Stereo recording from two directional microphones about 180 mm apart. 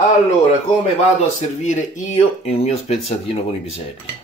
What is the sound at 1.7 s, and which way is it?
Speech, 40° left (ahead or behind).